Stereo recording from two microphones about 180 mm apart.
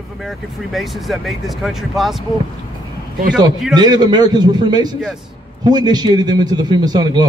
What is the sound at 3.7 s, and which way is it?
A man's voice, 20° right (ahead or behind).